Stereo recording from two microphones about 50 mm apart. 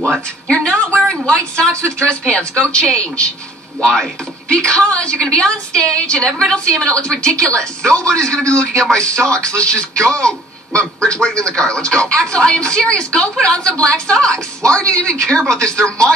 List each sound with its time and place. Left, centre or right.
0.5 s a sound: left
1.2 s a woman's voice: centre
4.5 s a woman's voice: centre